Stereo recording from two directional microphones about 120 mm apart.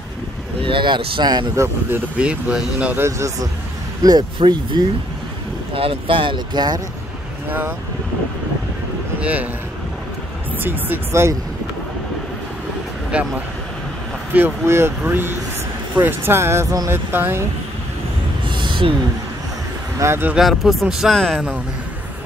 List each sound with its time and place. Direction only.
0.6 s speech: 45° right (ahead or behind)
2.1 s speech: 10° right (ahead or behind)
3.1 s speech: 25° right (ahead or behind)
5.7 s speech: 50° right (ahead or behind)
7.4 s speech: 15° right (ahead or behind)
9.2 s speech: 10° right (ahead or behind)
10.6 s speech: 15° right (ahead or behind)
13.1 s speech: 10° right (ahead or behind)
14.3 s speech: 20° right (ahead or behind)
18.4 s a sound: 40° right (ahead or behind)
20.0 s speech: 20° right (ahead or behind)
20.3 s speech: 5° right (ahead or behind)